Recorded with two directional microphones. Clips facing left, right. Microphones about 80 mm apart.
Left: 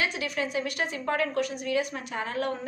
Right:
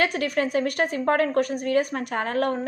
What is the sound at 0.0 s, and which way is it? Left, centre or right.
A woman's voice, right.